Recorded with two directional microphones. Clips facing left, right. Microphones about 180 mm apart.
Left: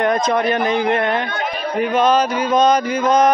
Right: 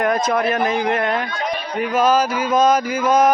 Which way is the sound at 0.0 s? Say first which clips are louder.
Left 1 dB; 5° right (ahead or behind).